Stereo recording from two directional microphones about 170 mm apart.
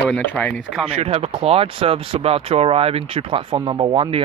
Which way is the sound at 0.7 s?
5° right (ahead or behind).